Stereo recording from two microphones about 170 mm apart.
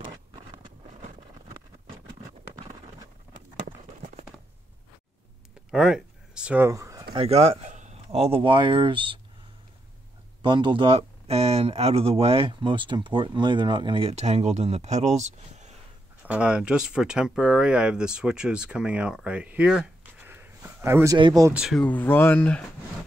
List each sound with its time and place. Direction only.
5.7 s a sound: 5° right (ahead or behind)
7.2 s speech: 35° right (ahead or behind)
10.4 s speech: 30° right (ahead or behind)
16.3 s speech: 5° right (ahead or behind)
20.1 s a sound: 10° right (ahead or behind)
21.2 s speech: 20° right (ahead or behind)
21.5 s speech: centre (ahead or behind)
21.8 s speech: 10° left (ahead or behind)